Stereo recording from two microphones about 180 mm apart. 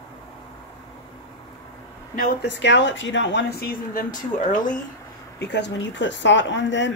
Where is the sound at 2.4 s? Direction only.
80° left; by 4.0 s 55° left (ahead or behind).